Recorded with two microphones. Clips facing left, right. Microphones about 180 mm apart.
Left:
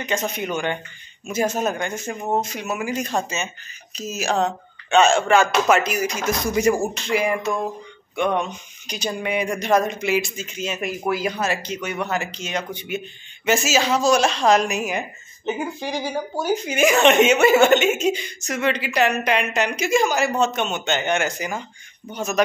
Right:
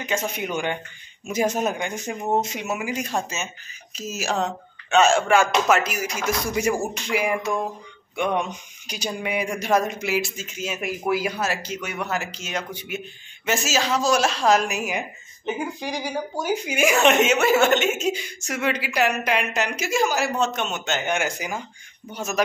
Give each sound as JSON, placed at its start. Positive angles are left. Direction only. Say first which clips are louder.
{"t": 0.0, "sound": "speech", "louder": "left 2 dB", "side_deg": -10}
{"t": 2.9, "sound": "speech", "louder": "left 2 dB", "side_deg": -10}
{"t": 16.5, "sound": "speech", "louder": "left 3 dB", "side_deg": -10}